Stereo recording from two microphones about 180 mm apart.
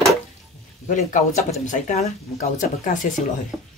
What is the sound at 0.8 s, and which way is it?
Speech, 45° left (ahead or behind).